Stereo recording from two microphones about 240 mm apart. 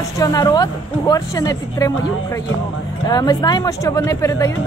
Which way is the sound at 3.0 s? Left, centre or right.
Centre.